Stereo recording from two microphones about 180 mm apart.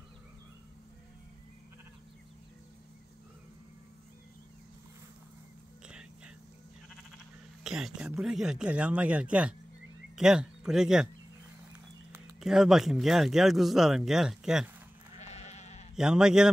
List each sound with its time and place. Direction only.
5.9 s whispering: 5° right (ahead or behind)
7.6 s speech: 5° right (ahead or behind)
12.1 s speech: 5° right (ahead or behind)
15.1 s goat: 40° left (ahead or behind)
16.0 s speech: 5° right (ahead or behind)